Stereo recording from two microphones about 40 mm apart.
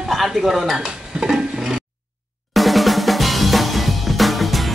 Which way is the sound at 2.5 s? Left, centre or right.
Centre.